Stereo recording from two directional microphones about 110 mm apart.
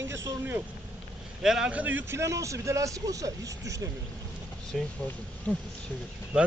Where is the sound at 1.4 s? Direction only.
5° right (ahead or behind); by 3.9 s 30° right (ahead or behind).